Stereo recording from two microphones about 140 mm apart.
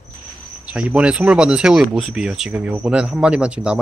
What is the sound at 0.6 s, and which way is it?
Speech, 10° right (ahead or behind).